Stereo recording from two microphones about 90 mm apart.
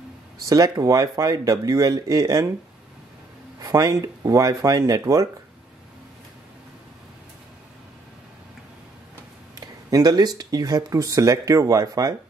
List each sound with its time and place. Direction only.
0.5 s speech: 40° right (ahead or behind)
3.5 s speech: 40° right (ahead or behind)
9.6 s speech: 45° right (ahead or behind)